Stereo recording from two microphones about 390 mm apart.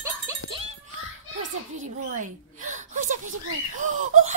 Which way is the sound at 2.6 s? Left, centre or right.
Centre.